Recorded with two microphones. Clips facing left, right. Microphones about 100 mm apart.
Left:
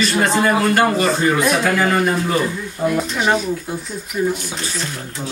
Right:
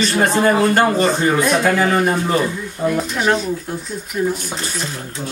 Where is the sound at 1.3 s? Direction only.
5° left (ahead or behind).